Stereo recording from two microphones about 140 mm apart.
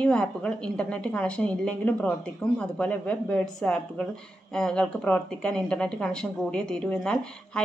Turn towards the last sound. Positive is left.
turn(degrees=5)  # may be behind; listen again after turning